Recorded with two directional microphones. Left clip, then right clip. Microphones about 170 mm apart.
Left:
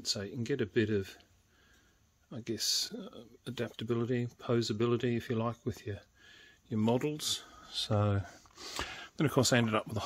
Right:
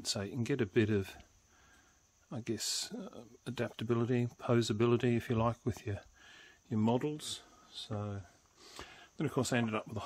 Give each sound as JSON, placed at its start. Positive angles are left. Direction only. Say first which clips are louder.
{"t": 0.0, "sound": "speech", "louder": "left 2 dB", "side_deg": -30}
{"t": 2.2, "sound": "speech", "louder": "left 4 dB", "side_deg": -25}
{"t": 6.8, "sound": "speech", "louder": "left 2 dB", "side_deg": -5}
{"t": 7.6, "sound": "speech", "louder": "left 11 dB", "side_deg": 40}